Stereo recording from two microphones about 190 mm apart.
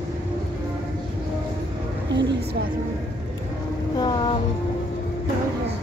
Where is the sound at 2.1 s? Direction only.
65° right (ahead or behind).